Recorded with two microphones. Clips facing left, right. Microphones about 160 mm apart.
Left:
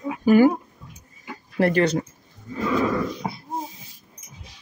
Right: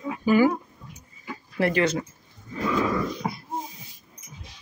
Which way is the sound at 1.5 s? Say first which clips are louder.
Left 3 dB; 40° left (ahead or behind).